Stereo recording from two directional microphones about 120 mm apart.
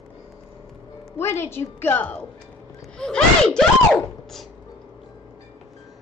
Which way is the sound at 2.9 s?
5° left (ahead or behind).